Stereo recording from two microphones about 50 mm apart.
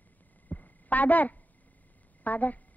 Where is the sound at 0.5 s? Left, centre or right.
Left.